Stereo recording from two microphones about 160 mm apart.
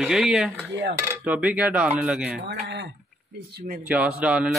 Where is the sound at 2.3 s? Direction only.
90° right; by 3.8 s 70° right (ahead or behind).